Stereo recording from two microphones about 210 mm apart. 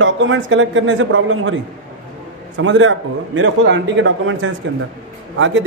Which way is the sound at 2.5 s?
65° right (ahead or behind).